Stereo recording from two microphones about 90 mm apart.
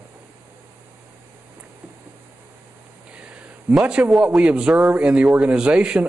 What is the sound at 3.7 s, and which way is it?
A man's voice, 10° right (ahead or behind).